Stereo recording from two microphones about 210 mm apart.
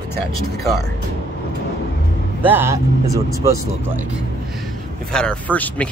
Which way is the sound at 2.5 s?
10° right (ahead or behind).